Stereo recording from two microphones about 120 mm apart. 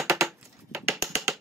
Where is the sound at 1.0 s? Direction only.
25° right (ahead or behind).